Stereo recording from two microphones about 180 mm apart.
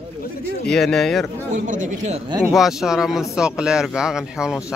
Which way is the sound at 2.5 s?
Centre (ahead or behind).